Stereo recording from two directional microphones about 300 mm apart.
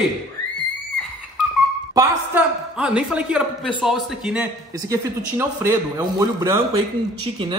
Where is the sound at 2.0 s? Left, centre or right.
Centre.